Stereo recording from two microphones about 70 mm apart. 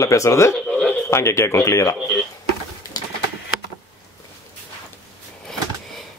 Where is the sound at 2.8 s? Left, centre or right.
Left.